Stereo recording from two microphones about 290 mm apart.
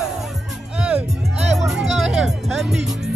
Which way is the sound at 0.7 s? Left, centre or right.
Centre.